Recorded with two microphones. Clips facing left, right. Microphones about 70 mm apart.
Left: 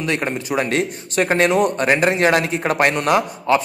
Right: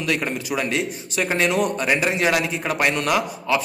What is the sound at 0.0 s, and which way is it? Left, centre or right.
Speech, left.